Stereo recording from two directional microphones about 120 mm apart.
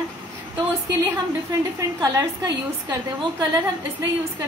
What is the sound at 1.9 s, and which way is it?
A woman's voice, 30° right (ahead or behind).